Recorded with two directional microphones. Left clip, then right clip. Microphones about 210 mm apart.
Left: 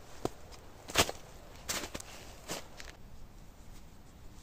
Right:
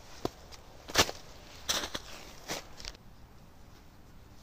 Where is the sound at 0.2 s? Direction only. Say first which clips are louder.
Right 1 dB; 25° right (ahead or behind).